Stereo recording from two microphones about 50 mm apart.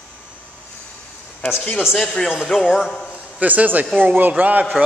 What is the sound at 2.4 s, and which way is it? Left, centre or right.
Speech, centre.